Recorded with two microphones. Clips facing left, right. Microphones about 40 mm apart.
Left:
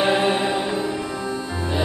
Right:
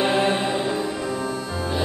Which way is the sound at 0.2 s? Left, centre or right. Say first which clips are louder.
Left 1 dB; centre.